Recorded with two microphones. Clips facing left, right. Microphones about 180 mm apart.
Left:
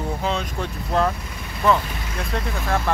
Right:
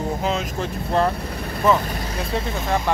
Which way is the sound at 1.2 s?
60° right (ahead or behind).